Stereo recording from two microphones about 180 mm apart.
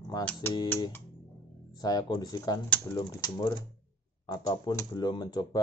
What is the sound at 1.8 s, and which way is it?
Speech, 20° left (ahead or behind).